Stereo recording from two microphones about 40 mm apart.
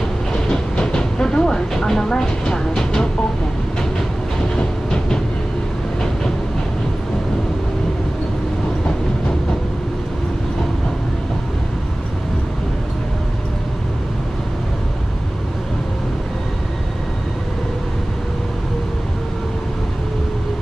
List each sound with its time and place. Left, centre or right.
0.5 s train: centre
4.6 s train: left